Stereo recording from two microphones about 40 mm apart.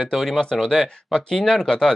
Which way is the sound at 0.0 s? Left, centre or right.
Centre.